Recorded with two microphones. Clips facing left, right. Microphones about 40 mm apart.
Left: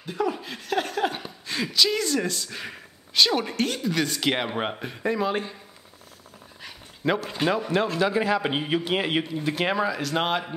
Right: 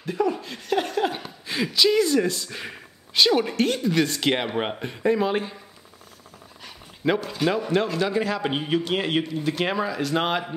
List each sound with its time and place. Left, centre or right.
0.0 s speech: centre
0.6 s a sound: centre
1.4 s speech: centre
7.0 s a man's voice: centre